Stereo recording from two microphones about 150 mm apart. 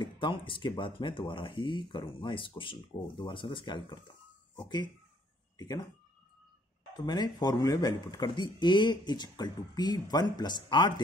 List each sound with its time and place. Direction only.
0.0 s speech: 35° left (ahead or behind)
5.6 s speech: 25° left (ahead or behind)
7.1 s speech: 25° left (ahead or behind)